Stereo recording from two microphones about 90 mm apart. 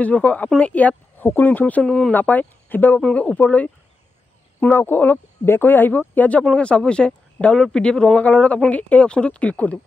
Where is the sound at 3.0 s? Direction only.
10° left (ahead or behind).